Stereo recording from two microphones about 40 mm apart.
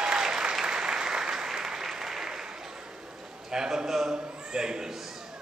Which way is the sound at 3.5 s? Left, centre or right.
Centre.